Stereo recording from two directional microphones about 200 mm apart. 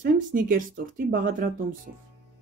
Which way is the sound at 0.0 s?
40° right (ahead or behind).